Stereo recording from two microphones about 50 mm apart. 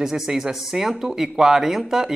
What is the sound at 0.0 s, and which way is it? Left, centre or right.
Speech, centre.